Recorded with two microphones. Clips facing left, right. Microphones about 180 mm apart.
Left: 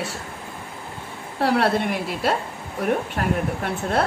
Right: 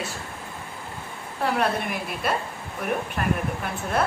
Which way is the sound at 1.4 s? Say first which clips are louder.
Left 4 dB; 75° left (ahead or behind).